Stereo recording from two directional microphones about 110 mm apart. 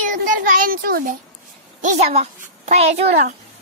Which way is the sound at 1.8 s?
85° right.